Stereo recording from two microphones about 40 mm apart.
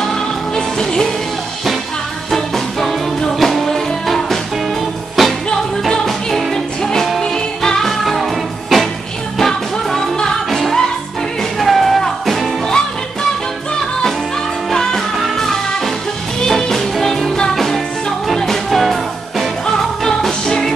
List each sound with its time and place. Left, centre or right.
0.1 s music: centre
2.3 s music: centre
8.0 s music: centre
10.5 s music: centre
12.6 s music: centre
14.7 s music: centre